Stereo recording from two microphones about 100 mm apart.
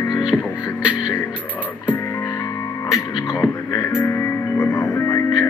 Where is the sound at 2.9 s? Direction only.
30° left (ahead or behind).